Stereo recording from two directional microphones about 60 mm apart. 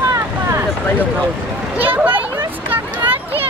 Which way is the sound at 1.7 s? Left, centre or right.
Right.